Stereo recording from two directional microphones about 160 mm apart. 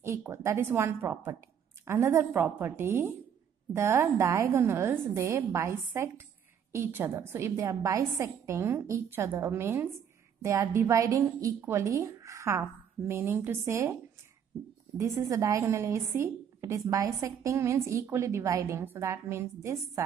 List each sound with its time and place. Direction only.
0.0 s a woman's voice: 15° right (ahead or behind)
15.0 s a woman's voice: 20° right (ahead or behind)